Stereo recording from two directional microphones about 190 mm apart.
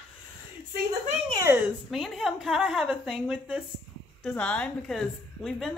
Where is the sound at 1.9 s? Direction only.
Centre (ahead or behind).